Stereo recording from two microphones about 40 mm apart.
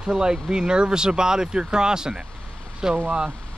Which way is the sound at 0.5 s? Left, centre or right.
Centre.